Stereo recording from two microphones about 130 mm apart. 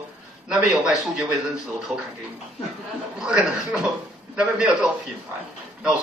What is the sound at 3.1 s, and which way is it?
A man's voice, 5° right (ahead or behind).